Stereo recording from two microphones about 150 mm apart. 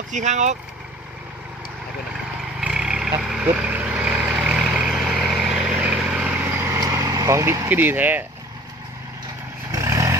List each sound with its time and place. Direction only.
0.1 s speech: 50° right (ahead or behind)
2.6 s vehicle: 5° right (ahead or behind)
9.7 s vehicle: 20° right (ahead or behind)